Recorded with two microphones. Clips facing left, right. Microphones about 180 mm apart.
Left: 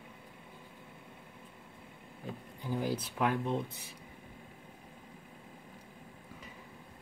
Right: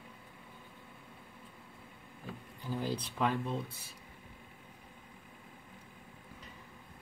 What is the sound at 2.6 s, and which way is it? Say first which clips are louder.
Speech: left 2 dB; 15° left (ahead or behind).